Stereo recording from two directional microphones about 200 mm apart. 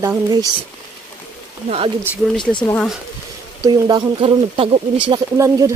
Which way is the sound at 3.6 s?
20° right (ahead or behind).